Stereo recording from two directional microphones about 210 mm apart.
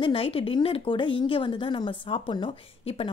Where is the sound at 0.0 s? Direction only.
25° left (ahead or behind).